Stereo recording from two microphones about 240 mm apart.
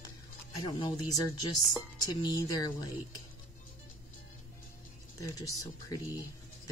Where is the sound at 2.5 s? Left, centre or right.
Centre.